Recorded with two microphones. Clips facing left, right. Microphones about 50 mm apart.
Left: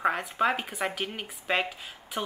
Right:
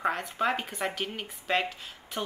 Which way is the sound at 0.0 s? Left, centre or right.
Centre.